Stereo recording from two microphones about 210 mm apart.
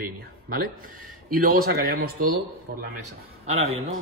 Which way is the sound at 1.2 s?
45° right (ahead or behind).